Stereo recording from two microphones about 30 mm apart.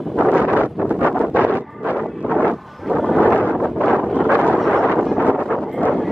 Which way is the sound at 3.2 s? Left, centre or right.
Left.